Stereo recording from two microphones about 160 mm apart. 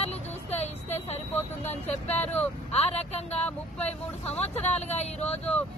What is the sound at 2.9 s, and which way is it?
Speech, 40° left (ahead or behind).